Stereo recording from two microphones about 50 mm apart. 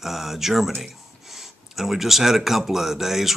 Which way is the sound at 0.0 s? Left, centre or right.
Centre.